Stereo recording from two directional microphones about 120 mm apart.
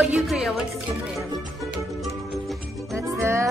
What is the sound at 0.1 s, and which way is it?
Speech, 5° right (ahead or behind).